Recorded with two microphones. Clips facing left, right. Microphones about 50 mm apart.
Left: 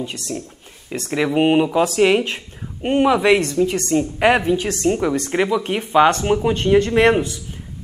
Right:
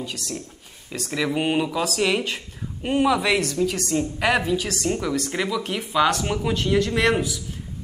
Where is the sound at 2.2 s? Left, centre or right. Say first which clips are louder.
Left 2 dB; centre.